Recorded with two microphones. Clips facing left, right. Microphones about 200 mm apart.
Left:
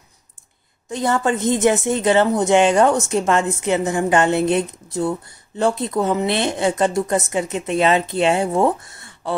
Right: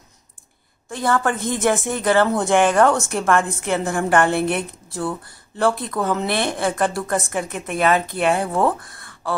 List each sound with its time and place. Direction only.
0.8 s a woman's voice: 20° left (ahead or behind)